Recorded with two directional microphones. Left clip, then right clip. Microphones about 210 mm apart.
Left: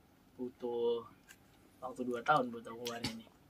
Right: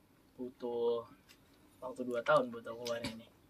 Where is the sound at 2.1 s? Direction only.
5° left (ahead or behind).